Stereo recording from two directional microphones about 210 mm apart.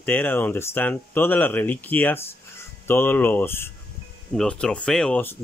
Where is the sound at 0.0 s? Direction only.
10° left (ahead or behind).